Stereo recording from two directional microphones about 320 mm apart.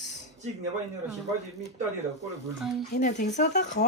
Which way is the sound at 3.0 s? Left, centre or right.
Left.